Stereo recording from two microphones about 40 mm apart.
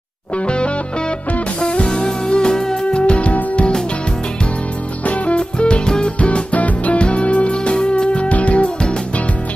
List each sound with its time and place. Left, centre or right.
1.6 s music: left
5.0 s music: left